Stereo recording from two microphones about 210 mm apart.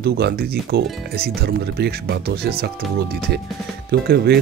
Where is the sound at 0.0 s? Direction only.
50° right (ahead or behind).